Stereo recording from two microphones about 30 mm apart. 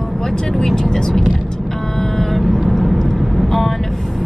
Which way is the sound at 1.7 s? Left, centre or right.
Centre.